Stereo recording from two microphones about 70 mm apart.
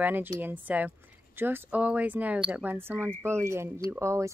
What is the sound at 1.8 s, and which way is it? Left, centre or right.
Speech, centre.